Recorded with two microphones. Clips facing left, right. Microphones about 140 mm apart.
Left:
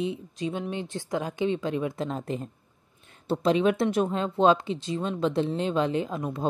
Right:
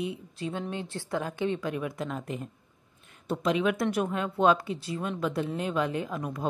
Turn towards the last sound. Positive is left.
turn(degrees=25)  # may be behind; listen again after turning